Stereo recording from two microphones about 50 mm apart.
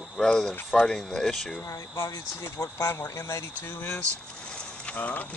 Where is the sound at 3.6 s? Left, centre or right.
Left.